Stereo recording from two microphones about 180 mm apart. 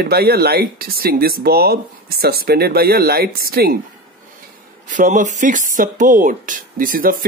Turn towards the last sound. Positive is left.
turn(degrees=-50)  # may be behind; listen again after turning